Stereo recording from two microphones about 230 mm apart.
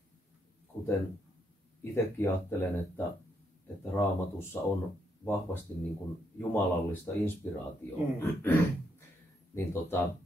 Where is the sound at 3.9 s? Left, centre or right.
Centre.